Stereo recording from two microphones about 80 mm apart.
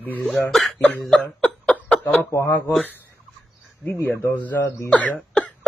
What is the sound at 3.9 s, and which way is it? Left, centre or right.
Speech, left.